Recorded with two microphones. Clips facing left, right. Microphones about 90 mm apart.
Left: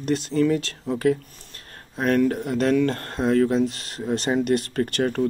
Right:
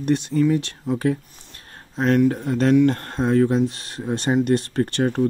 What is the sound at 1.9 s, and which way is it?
Speech, 25° right (ahead or behind).